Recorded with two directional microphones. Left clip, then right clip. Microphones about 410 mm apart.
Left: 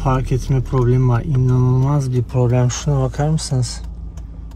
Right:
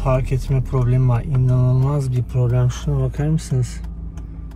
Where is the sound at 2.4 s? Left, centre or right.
Left.